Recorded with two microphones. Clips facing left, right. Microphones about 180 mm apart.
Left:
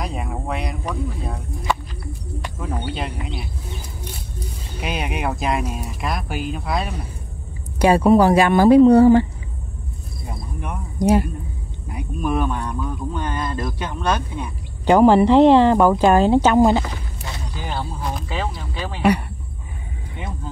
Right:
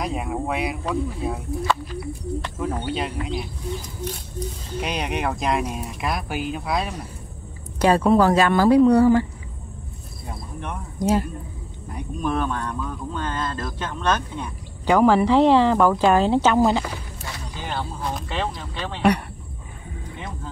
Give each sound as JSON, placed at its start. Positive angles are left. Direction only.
{"t": 0.0, "sound": "a sound", "side_deg": 0}
{"t": 2.6, "sound": "speech", "side_deg": 0}
{"t": 7.8, "sound": "speech", "side_deg": 10}
{"t": 10.6, "sound": "speech", "side_deg": 10}
{"t": 14.9, "sound": "speech", "side_deg": 25}